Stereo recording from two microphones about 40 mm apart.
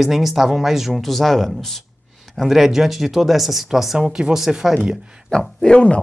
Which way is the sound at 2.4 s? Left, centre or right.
Centre.